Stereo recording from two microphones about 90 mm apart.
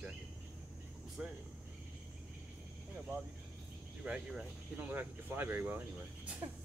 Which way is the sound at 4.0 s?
10° right (ahead or behind).